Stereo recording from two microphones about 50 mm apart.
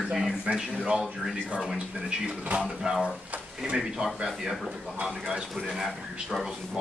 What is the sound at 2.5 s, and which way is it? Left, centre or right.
A man's voice, centre.